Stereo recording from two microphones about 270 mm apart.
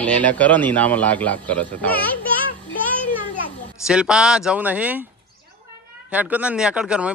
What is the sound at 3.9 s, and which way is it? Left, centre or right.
Speech, centre.